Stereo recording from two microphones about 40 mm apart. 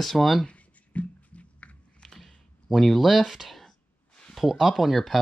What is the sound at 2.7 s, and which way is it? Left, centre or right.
Speech, centre.